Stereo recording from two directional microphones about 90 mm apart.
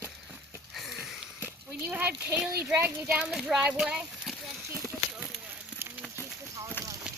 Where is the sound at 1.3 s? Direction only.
20° right (ahead or behind).